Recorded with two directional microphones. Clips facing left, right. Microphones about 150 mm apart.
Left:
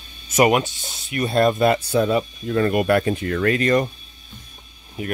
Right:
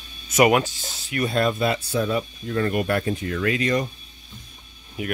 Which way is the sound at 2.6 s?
90° left.